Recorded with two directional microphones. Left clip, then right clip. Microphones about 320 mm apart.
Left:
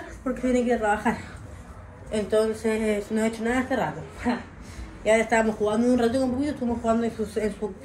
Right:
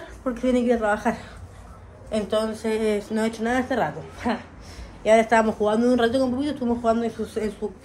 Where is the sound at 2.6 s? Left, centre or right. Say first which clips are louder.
Right 2 dB; centre.